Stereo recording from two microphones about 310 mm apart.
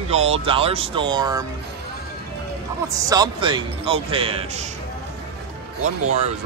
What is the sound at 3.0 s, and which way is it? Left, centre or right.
A man's voice, centre.